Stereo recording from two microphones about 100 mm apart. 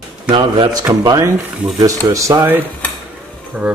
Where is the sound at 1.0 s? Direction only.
35° right (ahead or behind).